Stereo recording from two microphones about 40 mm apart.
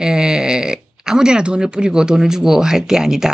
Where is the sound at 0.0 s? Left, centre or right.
Centre.